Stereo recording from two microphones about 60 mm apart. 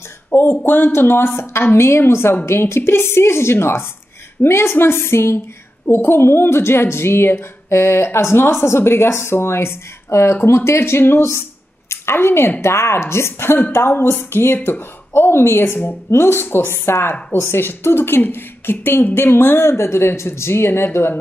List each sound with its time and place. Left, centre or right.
0.3 s a woman's voice: left